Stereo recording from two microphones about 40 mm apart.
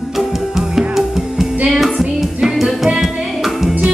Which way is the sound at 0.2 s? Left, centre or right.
Centre.